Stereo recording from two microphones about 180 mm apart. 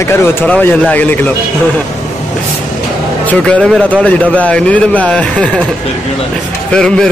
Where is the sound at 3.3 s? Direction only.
10° left (ahead or behind).